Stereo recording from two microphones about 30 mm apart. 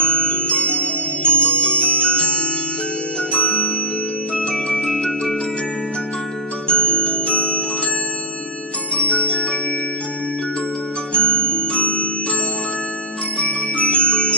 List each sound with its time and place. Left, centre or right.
0.0 s music: left
1.5 s bell: left
3.3 s music: left
4.5 s music: centre
6.7 s music: left
8.9 s glockenspiel: left
11.1 s music: left
13.7 s glockenspiel: left